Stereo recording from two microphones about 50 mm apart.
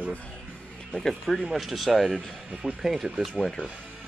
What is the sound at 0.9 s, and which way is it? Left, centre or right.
Speech, centre.